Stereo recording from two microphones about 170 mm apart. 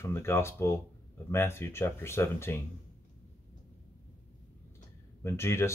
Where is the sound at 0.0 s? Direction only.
15° left (ahead or behind).